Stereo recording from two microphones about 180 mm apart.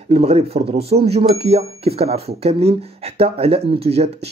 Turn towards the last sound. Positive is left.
turn(degrees=-35)  # may be behind; listen again after turning